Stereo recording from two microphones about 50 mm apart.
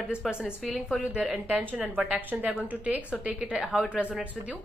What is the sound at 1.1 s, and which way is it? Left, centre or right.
Speech, centre.